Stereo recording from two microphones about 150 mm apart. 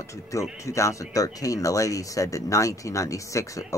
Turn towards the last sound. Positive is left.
turn(degrees=20)  # may be behind; listen again after turning